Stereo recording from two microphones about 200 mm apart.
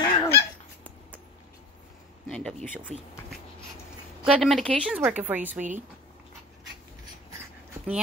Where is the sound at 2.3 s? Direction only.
5° left (ahead or behind).